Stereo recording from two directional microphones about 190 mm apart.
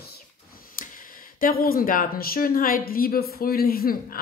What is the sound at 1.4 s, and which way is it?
A woman's voice, 50° left (ahead or behind).